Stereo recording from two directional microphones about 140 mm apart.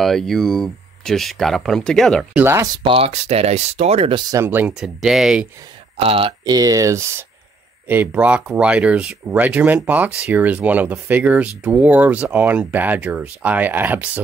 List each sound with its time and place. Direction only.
0.0 s speech: centre (ahead or behind)
2.3 s speech: 15° right (ahead or behind)
2.7 s speech: 40° right (ahead or behind)
4.1 s speech: 25° right (ahead or behind)
4.7 s speech: 5° right (ahead or behind)
5.9 s speech: 45° right (ahead or behind)
6.4 s speech: 25° right (ahead or behind); by 14.2 s 10° right (ahead or behind)